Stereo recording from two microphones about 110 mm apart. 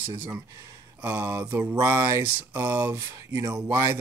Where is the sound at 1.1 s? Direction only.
25° right (ahead or behind).